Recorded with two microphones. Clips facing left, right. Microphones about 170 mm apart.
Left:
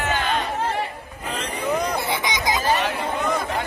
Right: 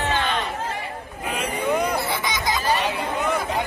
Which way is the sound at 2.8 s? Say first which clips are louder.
Even; 10° right (ahead or behind).